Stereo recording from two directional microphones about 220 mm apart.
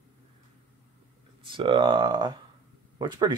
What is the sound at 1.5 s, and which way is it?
Speech, 20° right (ahead or behind).